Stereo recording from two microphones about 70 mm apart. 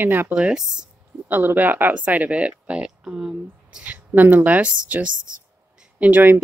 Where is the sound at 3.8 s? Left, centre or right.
Right.